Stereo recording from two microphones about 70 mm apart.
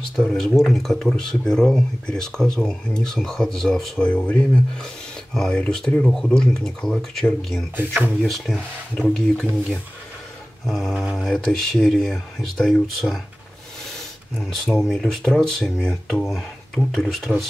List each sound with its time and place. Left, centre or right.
0.2 s speech: centre
4.0 s speech: centre
5.3 s speech: centre
14.5 s speech: centre